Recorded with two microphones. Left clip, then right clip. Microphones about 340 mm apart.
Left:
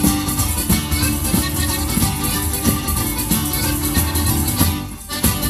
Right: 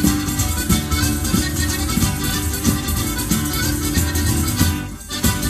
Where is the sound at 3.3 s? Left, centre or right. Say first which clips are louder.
Even; left.